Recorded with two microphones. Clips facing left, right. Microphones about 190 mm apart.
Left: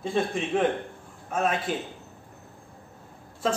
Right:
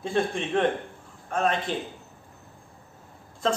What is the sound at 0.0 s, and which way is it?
Speech, centre (ahead or behind).